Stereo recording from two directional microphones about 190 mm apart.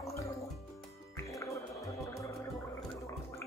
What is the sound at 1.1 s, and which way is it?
Music, 15° left (ahead or behind).